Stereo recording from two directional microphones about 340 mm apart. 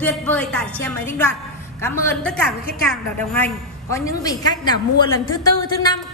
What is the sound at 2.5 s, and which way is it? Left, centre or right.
Speech, left.